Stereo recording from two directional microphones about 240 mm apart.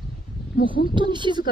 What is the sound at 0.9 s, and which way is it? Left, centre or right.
Speech, centre.